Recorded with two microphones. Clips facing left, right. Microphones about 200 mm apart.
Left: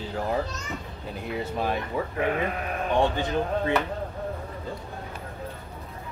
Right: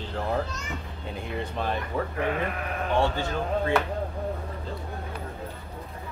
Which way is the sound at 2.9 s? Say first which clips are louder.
Left 2 dB; 15° left (ahead or behind).